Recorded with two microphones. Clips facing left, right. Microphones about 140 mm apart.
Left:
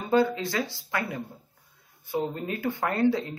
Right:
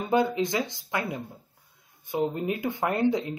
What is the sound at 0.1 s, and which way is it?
Speech, 20° right (ahead or behind).